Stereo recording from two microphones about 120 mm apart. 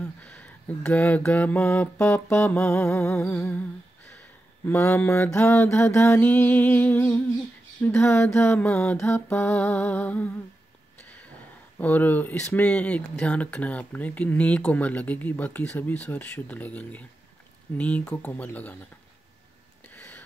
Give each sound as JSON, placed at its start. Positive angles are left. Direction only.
{"t": 0.0, "sound": "speech", "side_deg": 10}
{"t": 4.6, "sound": "speech", "side_deg": 15}
{"t": 11.8, "sound": "speech", "side_deg": 15}
{"t": 19.9, "sound": "a sound", "side_deg": 15}